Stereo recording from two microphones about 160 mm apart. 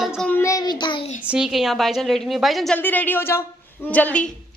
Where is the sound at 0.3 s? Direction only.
20° left (ahead or behind).